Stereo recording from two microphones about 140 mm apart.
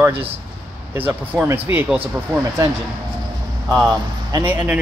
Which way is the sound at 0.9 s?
10° right (ahead or behind).